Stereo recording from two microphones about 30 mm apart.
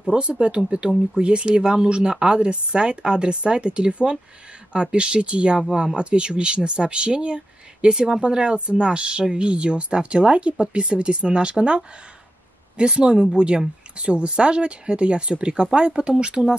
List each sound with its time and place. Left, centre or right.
0.1 s speech: right